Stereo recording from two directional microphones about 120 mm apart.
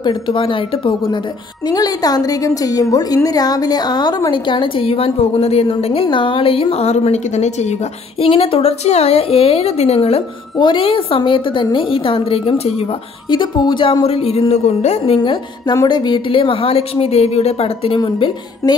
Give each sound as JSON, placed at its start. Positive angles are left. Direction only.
{"t": 0.0, "sound": "a woman's voice", "side_deg": 40}
{"t": 1.7, "sound": "a woman's voice", "side_deg": 30}
{"t": 8.2, "sound": "a woman's voice", "side_deg": 50}
{"t": 13.3, "sound": "speech", "side_deg": 40}
{"t": 15.2, "sound": "a woman's voice", "side_deg": 35}